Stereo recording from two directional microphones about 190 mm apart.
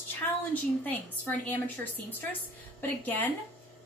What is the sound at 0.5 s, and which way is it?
A woman's voice, 10° left (ahead or behind).